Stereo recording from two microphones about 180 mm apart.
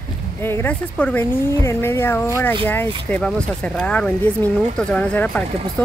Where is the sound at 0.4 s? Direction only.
15° left (ahead or behind).